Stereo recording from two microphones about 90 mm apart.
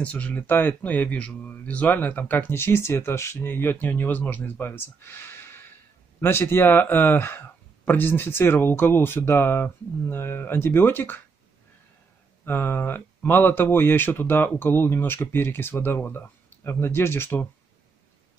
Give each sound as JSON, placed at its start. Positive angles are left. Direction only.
{"t": 0.0, "sound": "speech", "side_deg": 15}
{"t": 12.4, "sound": "speech", "side_deg": 25}